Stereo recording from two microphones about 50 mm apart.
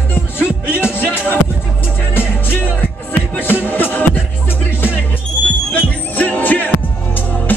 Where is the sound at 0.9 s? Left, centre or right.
Left.